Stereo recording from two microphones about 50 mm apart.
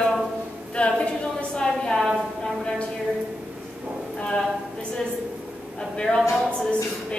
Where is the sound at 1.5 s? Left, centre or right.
Centre.